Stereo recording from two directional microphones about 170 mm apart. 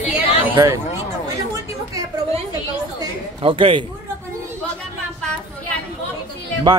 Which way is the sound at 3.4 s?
30° right (ahead or behind).